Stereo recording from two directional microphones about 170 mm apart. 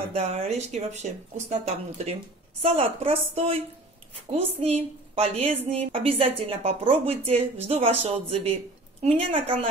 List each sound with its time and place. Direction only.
0.1 s a woman's voice: 35° right (ahead or behind)